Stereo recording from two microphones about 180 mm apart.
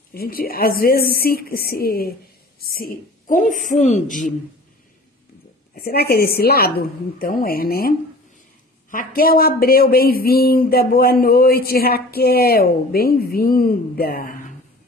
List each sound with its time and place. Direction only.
0.1 s a woman's voice: 55° left (ahead or behind)
5.8 s speech: 60° left (ahead or behind)
8.9 s speech: 55° left (ahead or behind)